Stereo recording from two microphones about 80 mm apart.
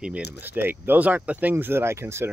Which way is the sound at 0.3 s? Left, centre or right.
Right.